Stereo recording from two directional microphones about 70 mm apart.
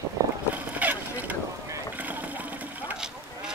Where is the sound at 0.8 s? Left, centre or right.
Right.